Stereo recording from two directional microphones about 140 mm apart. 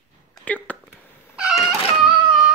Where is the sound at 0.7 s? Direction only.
10° left (ahead or behind).